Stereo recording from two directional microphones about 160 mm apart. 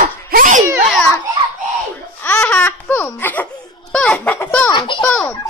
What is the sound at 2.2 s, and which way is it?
Laughter, 10° left (ahead or behind).